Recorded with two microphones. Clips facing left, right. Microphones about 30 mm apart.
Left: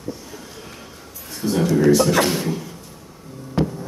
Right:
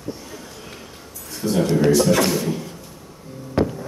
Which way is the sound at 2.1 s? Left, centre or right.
Left.